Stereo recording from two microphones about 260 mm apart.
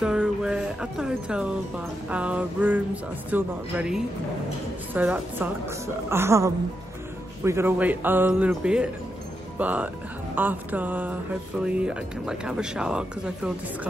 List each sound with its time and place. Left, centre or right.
0.0 s a woman's voice: centre